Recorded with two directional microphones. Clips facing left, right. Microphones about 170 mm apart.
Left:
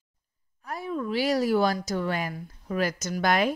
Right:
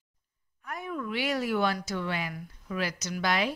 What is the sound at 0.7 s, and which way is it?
Speech, 30° left (ahead or behind).